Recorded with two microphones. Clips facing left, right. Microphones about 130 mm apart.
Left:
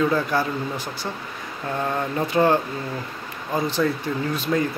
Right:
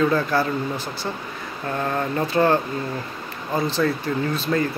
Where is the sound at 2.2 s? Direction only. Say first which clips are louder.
Even; 15° left (ahead or behind).